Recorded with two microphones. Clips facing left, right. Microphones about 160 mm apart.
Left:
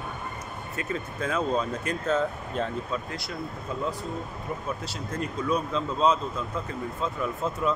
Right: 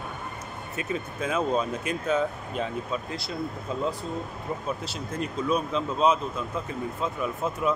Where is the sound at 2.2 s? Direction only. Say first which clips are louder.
Even; 5° right (ahead or behind).